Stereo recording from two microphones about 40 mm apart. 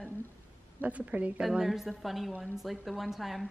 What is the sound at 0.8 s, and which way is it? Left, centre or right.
Speech, right.